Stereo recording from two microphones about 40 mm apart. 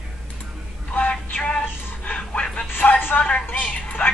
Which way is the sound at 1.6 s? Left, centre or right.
Left.